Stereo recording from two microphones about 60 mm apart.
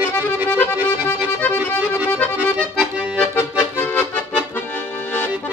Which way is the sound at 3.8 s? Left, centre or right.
Left.